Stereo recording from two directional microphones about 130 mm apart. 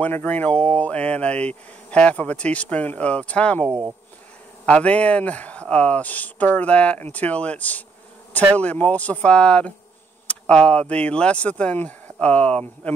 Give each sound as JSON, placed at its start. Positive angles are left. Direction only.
{"t": 0.0, "sound": "speech", "side_deg": 15}
{"t": 4.6, "sound": "speech", "side_deg": 10}